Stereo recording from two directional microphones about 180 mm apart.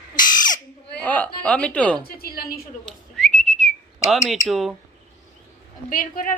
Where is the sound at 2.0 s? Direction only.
60° left (ahead or behind).